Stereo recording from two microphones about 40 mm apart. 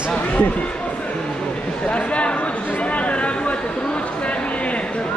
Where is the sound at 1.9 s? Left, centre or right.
Left.